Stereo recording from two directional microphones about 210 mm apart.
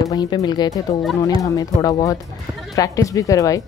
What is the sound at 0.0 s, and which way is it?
Speech, 20° left (ahead or behind).